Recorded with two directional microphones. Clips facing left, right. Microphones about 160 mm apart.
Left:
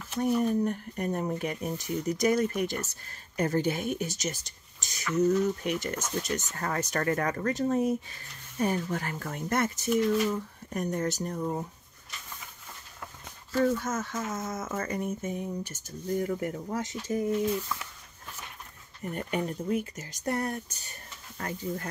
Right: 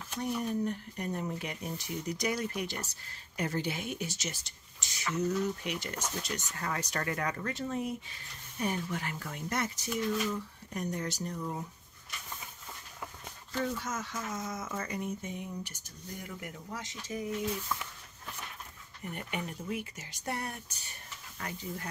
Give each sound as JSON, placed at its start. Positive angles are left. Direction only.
{"t": 0.2, "sound": "speech", "side_deg": 50}
{"t": 13.5, "sound": "speech", "side_deg": 50}
{"t": 19.1, "sound": "speech", "side_deg": 40}